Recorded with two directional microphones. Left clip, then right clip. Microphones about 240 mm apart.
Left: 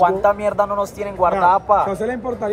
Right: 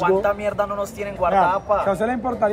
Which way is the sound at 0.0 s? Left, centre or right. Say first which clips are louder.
Left 4 dB; left.